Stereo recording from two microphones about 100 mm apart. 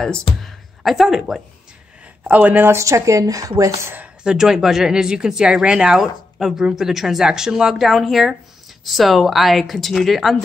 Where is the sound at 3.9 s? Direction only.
10° right (ahead or behind).